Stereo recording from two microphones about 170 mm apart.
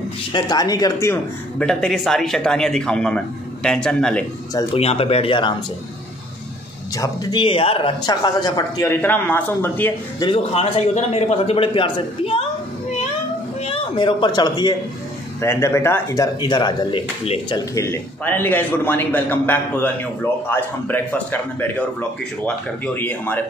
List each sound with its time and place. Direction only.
0.3 s speech: 25° left (ahead or behind); by 4.3 s 5° left (ahead or behind)
4.7 s a man's voice: 35° left (ahead or behind)
7.0 s speech: 25° left (ahead or behind)
9.0 s speech: 10° left (ahead or behind)
10.1 s a man's voice: 30° left (ahead or behind)
13.6 s a man's voice: 35° left (ahead or behind); by 21.8 s 10° left (ahead or behind)
22.9 s speech: 10° left (ahead or behind)